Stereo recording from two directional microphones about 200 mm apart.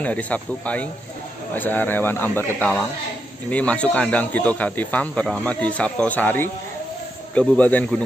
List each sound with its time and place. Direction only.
0.0 s speech: 5° left (ahead or behind)